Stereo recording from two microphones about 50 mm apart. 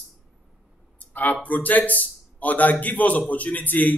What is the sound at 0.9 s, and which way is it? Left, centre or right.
Speech, left.